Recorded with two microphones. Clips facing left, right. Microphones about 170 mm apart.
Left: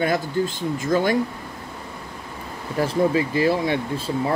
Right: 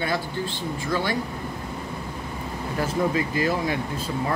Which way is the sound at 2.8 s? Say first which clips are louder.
Left 4 dB; 30° left (ahead or behind).